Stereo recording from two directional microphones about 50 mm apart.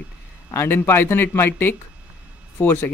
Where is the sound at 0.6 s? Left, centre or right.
Left.